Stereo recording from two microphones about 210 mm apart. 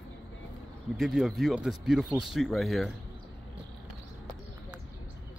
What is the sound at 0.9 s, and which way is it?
Speech, centre (ahead or behind).